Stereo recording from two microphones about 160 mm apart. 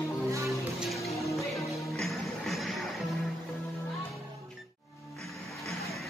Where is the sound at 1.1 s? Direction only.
20° left (ahead or behind).